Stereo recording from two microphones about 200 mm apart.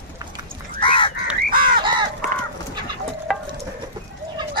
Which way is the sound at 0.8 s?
25° left (ahead or behind).